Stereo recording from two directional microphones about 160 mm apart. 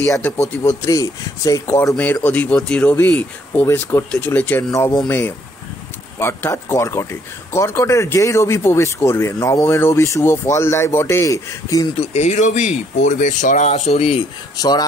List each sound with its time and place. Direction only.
0.0 s speech: 15° left (ahead or behind)
12.0 s speech: 45° left (ahead or behind)
14.6 s speech: 25° left (ahead or behind)